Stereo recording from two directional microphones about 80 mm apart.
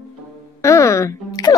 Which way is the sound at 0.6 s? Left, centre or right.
Left.